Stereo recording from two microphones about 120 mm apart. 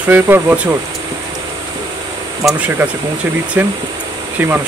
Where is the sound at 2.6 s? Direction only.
15° right (ahead or behind).